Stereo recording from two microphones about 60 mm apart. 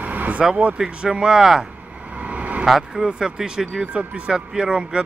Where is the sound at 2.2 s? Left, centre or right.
Right.